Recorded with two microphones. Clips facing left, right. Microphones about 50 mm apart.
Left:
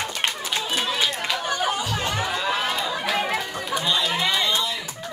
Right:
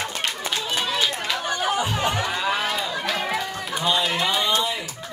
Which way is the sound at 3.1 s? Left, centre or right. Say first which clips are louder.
Left 2 dB; centre.